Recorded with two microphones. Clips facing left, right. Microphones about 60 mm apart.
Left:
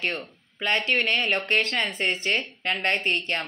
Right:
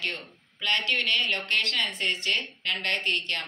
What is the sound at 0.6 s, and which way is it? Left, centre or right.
Speech, left.